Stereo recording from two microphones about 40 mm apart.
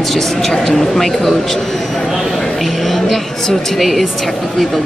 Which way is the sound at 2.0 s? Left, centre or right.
Centre.